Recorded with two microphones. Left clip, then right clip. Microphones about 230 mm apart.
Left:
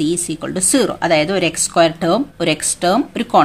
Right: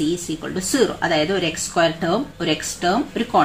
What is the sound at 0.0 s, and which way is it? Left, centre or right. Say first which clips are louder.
Speech: left 4 dB; left.